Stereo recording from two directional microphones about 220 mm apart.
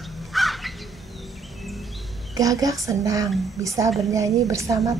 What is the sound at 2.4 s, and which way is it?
Speech, 15° right (ahead or behind).